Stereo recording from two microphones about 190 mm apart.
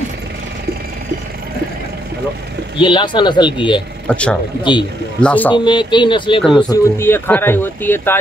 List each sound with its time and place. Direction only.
2.8 s speech: 25° left (ahead or behind)
4.1 s speech: 5° left (ahead or behind)
5.5 s speech: 25° left (ahead or behind)
6.7 s speech: 15° left (ahead or behind)